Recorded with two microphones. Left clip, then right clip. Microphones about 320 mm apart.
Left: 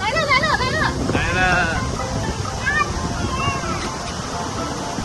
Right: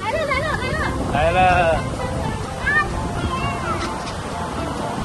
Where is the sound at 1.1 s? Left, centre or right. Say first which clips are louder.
Right 4 dB; centre.